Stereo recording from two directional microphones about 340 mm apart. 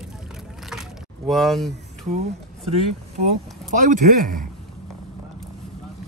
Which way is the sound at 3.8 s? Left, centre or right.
Right.